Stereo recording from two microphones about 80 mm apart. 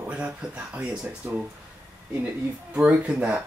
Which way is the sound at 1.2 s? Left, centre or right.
Right.